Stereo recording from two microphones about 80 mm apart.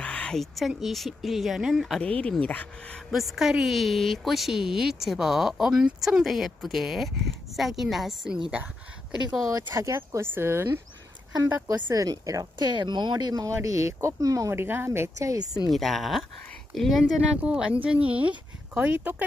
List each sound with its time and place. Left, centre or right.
0.0 s a woman's voice: centre
2.0 s speech: centre
3.1 s a woman's voice: centre
9.5 s speech: right
11.6 s speech: right
12.5 s speech: right
14.5 s speech: right
15.7 s a woman's voice: centre
17.3 s speech: centre